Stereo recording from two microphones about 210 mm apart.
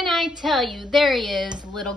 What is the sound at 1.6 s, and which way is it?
Speech, 20° right (ahead or behind).